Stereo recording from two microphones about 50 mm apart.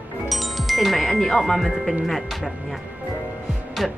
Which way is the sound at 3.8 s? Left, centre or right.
Centre.